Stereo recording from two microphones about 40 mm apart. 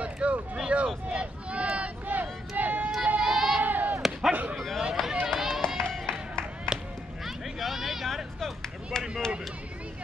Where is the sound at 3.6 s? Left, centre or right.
Right.